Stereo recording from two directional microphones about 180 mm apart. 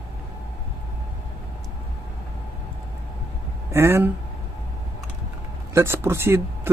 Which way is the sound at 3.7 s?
15° right (ahead or behind).